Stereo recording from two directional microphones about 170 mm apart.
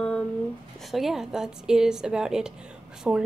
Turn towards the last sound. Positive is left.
turn(degrees=0)  # may be behind; listen again after turning